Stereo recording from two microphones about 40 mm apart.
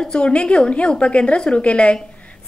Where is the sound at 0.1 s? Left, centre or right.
Left.